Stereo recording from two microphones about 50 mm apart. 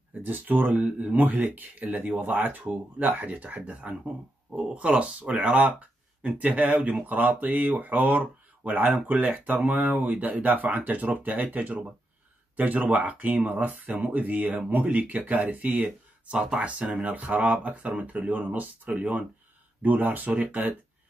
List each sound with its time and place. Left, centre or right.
0.1 s speech: right
15.7 s speech: centre